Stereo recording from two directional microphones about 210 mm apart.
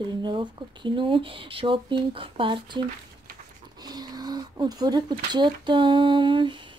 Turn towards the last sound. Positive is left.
turn(degrees=-25)  # may be behind; listen again after turning